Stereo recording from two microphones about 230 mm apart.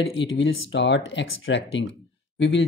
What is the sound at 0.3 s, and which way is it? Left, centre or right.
Speech, left.